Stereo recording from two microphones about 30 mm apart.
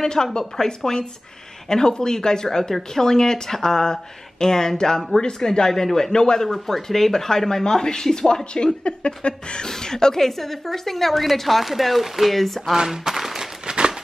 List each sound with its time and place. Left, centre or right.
0.0 s speech: left
5.7 s speech: centre
6.1 s speech: left
6.4 s speech: centre
8.5 s speech: left
9.7 s a woman's voice: centre
12.7 s speech: right
13.7 s a sound: right